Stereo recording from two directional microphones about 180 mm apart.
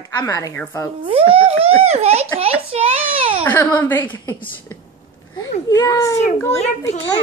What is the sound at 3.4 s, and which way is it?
Speech, 10° left (ahead or behind).